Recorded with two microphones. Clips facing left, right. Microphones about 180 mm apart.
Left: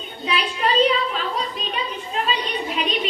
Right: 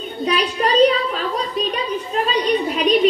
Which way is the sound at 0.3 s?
40° right (ahead or behind).